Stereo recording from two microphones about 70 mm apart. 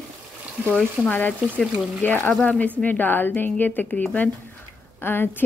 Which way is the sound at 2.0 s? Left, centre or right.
Left.